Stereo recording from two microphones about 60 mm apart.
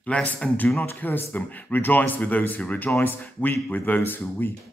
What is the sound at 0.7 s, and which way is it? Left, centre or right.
Speech, left.